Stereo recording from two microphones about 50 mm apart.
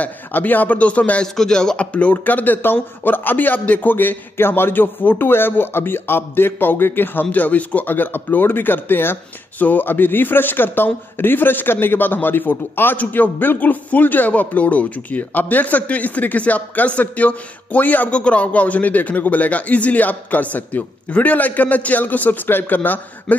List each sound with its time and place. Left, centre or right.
0.0 s a man's voice: left
1.2 s speech: centre
1.8 s a man's voice: left
18.1 s a man's voice: left